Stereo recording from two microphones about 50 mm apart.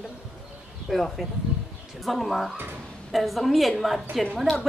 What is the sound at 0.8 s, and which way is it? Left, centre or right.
Speech, centre.